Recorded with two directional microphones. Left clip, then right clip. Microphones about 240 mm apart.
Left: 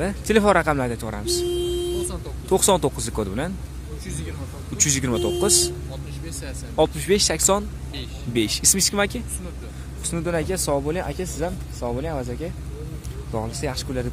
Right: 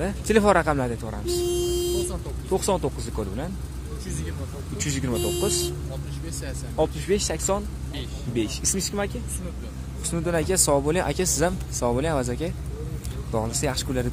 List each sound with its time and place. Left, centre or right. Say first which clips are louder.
0.0 s speech: left 2 dB; centre
1.0 s speech: left 2 dB; left
4.7 s speech: left 6 dB; left
10.0 s speech: even; centre